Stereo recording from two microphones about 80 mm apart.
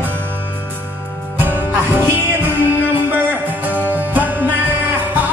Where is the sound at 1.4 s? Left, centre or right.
Right.